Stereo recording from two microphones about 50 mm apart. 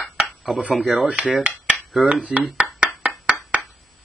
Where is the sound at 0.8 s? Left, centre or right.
Right.